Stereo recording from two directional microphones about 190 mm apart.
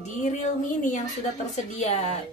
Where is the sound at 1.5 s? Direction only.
35° left (ahead or behind).